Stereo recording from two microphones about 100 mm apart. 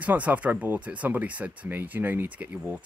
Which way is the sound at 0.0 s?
15° right (ahead or behind).